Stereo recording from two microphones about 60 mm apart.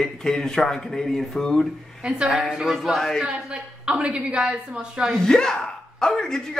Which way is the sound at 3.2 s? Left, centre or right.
Centre.